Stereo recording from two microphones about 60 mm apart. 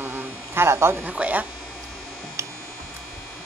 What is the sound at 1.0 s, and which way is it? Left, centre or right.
Speech, right.